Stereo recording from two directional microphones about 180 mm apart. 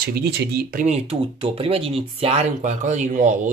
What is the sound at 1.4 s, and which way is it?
Speech, 30° right (ahead or behind).